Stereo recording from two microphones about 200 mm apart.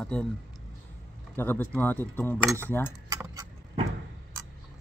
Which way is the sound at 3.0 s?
15° right (ahead or behind).